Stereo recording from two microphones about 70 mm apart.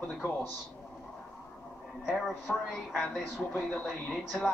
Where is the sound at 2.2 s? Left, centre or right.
Centre.